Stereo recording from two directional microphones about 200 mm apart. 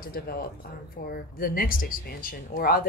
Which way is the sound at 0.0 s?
50° left (ahead or behind).